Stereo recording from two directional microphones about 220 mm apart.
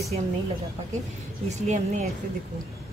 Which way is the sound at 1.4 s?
30° right (ahead or behind).